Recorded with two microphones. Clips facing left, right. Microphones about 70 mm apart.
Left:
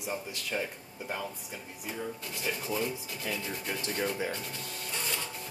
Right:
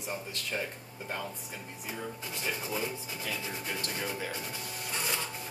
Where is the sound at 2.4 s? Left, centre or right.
Centre.